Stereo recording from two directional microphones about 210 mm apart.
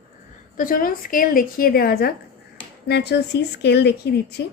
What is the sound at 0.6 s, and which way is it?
Speech, 40° left (ahead or behind).